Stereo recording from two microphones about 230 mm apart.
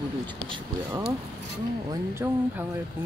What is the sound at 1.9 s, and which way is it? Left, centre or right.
Speech, centre.